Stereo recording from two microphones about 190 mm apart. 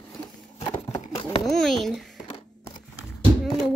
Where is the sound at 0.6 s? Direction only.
25° left (ahead or behind).